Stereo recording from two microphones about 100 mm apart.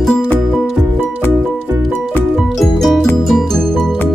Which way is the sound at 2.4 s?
Centre (ahead or behind).